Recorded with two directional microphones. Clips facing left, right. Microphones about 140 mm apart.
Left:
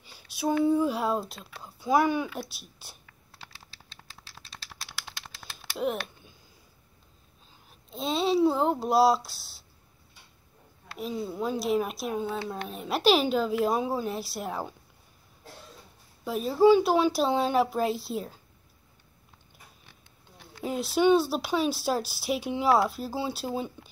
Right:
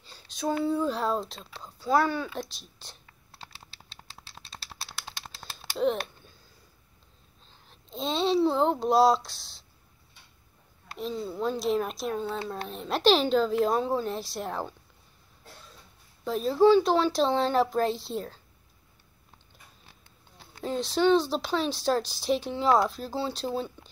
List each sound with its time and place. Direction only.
0.0 s a sound: 10° left (ahead or behind)
0.7 s speech: 10° left (ahead or behind)
3.1 s computer keyboard: 30° right (ahead or behind)
4.1 s a sound: 25° right (ahead or behind)
7.7 s speech: 5° left (ahead or behind)
11.0 s speech: 10° left (ahead or behind)
16.3 s speech: 10° left (ahead or behind)
20.6 s speech: 10° left (ahead or behind)